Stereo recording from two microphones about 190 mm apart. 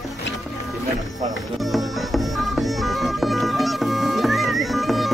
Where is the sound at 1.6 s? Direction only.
Centre (ahead or behind).